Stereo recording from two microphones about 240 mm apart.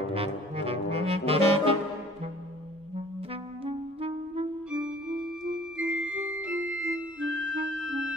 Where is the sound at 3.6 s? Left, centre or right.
Right.